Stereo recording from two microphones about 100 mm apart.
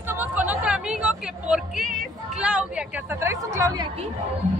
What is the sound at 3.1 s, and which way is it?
Speech, 25° right (ahead or behind).